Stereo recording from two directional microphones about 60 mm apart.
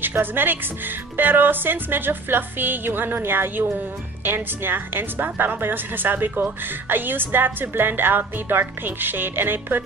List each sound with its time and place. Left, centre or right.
0.0 s a woman's voice: right